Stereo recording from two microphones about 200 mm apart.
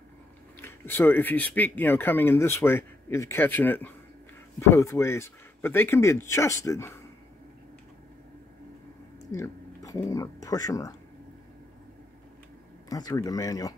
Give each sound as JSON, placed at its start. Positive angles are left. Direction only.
{"t": 0.6, "sound": "speech", "side_deg": 10}
{"t": 9.3, "sound": "speech", "side_deg": 15}
{"t": 12.9, "sound": "speech", "side_deg": 15}